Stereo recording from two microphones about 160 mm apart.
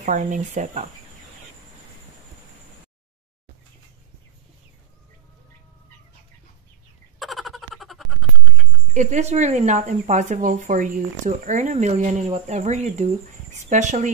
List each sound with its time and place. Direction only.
0.0 s speech: 50° right (ahead or behind)
7.2 s a sound: centre (ahead or behind)
8.9 s speech: 50° right (ahead or behind)